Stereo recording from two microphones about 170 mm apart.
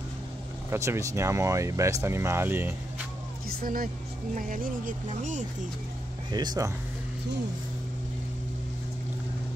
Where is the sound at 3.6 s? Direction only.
55° right (ahead or behind).